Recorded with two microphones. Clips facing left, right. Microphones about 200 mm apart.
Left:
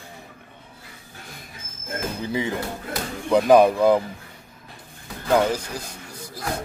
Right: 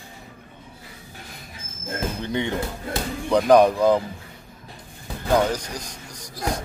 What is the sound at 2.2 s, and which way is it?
Speech, 5° left (ahead or behind).